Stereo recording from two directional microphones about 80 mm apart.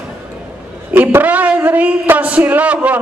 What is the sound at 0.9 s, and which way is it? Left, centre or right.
A man's voice, right.